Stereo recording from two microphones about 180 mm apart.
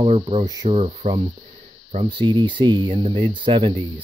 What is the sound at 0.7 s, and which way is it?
Speech, 35° right (ahead or behind).